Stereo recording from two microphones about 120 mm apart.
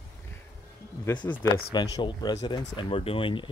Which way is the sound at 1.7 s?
35° left (ahead or behind).